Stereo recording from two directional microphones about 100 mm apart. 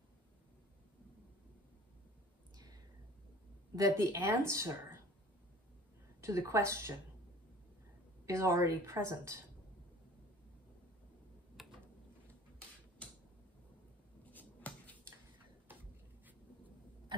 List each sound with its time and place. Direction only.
2.5 s a sound: 40° right (ahead or behind)
3.9 s a woman's voice: 30° right (ahead or behind)
6.2 s a woman's voice: 30° right (ahead or behind)
8.3 s a woman's voice: 30° right (ahead or behind)
11.6 s a sound: centre (ahead or behind)
14.3 s finger snapping: 15° left (ahead or behind)